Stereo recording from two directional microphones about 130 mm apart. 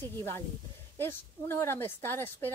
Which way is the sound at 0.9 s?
20° left (ahead or behind).